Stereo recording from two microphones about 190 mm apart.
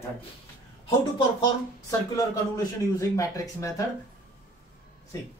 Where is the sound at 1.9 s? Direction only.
15° left (ahead or behind).